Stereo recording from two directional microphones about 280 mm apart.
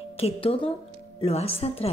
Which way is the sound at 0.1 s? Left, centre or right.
Left.